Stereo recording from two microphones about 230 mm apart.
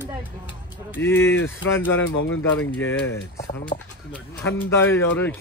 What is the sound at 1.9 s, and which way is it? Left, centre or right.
Speech, left.